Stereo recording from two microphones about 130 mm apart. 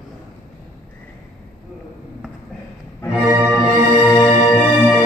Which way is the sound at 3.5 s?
Centre (ahead or behind).